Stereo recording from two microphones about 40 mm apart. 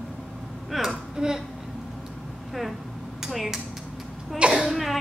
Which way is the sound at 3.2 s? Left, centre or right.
Centre.